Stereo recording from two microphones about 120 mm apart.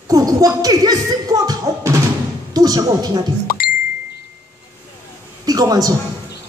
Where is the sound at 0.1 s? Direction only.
30° right (ahead or behind).